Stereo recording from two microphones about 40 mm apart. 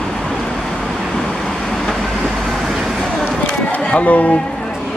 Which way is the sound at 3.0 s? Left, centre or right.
Centre.